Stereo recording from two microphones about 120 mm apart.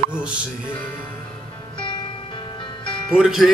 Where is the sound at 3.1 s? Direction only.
Centre (ahead or behind).